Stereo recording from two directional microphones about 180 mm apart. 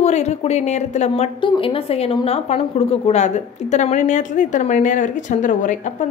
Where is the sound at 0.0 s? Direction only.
40° left (ahead or behind).